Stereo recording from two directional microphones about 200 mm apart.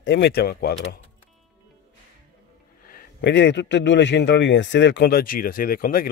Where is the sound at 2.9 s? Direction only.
55° left (ahead or behind).